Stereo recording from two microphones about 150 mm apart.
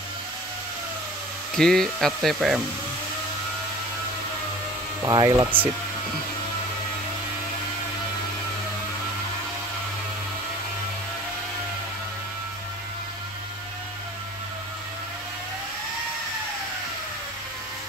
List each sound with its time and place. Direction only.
1.5 s speech: 5° left (ahead or behind)
5.0 s speech: 25° right (ahead or behind)